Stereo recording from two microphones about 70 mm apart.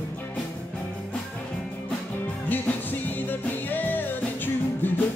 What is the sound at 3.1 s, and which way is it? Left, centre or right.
Music, left.